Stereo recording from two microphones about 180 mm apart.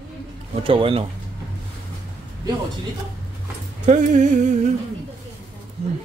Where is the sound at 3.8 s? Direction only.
45° right (ahead or behind).